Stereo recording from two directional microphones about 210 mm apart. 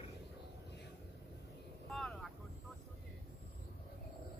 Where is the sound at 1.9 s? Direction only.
5° left (ahead or behind).